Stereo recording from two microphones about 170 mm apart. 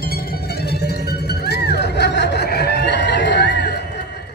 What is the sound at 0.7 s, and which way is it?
Music, 70° left (ahead or behind).